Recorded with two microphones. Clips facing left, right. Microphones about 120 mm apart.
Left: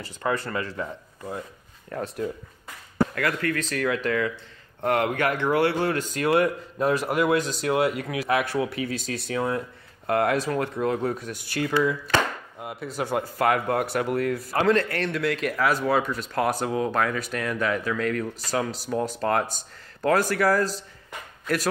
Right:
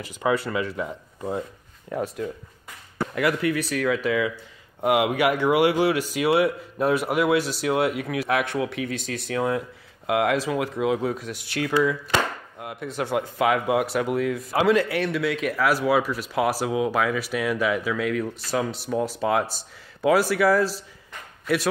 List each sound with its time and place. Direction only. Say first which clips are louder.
0.5 s speech: right 3 dB; 5° right (ahead or behind)
3.2 s speech: right 3 dB; 15° right (ahead or behind)